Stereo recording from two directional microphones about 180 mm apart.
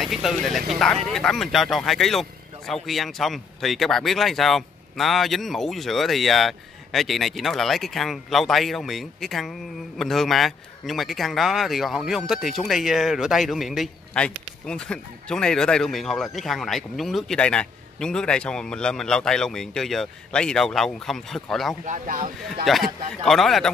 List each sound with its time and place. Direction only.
0.0 s speech: centre (ahead or behind)
21.8 s speech: 45° right (ahead or behind)
22.7 s speech: centre (ahead or behind)